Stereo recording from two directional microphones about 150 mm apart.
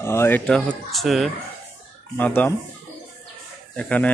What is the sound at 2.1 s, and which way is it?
Speech, 10° left (ahead or behind).